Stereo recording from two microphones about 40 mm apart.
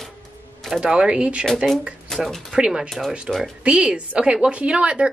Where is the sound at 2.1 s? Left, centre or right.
Centre.